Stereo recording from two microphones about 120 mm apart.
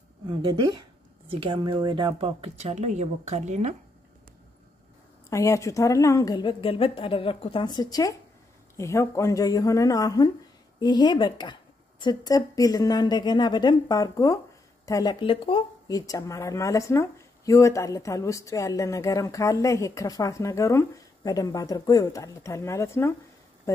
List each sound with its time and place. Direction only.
0.3 s a woman's voice: 40° right (ahead or behind); by 3.7 s 75° right (ahead or behind)
5.3 s a woman's voice: 25° left (ahead or behind)
15.1 s speech: 45° left (ahead or behind)
15.9 s speech: 30° left (ahead or behind)